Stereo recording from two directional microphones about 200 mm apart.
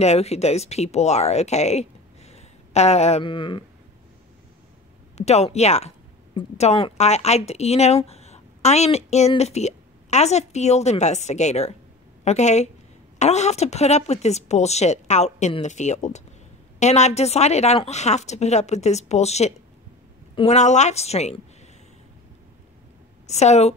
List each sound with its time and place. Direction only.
0.0 s speech: 30° left (ahead or behind)
5.1 s a woman's voice: 30° left (ahead or behind)
23.2 s a woman's voice: 35° left (ahead or behind)